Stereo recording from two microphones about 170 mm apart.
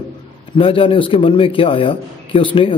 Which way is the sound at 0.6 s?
30° left (ahead or behind).